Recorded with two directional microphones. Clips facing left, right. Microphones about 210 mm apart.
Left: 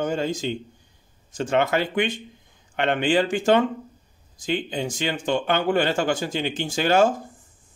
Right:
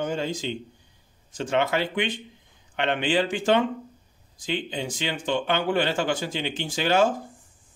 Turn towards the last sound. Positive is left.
turn(degrees=50)  # may be behind; listen again after turning